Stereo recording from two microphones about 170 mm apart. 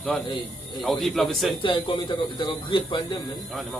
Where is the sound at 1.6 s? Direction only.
30° left (ahead or behind).